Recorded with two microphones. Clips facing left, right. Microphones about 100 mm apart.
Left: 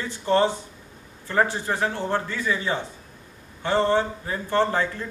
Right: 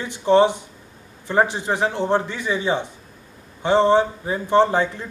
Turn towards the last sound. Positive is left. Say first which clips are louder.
# right 5 dB
turn(degrees=-20)  # may be behind; listen again after turning